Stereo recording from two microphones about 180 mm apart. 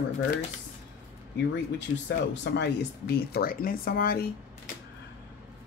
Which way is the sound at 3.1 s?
55° left (ahead or behind).